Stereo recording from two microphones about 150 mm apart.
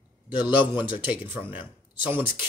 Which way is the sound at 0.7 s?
35° left (ahead or behind).